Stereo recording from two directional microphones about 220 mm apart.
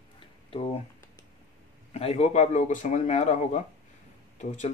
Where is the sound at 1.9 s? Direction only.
30° left (ahead or behind).